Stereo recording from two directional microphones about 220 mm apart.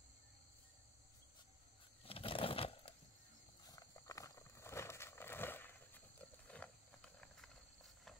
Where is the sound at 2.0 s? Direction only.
25° left (ahead or behind); by 6.0 s 10° left (ahead or behind).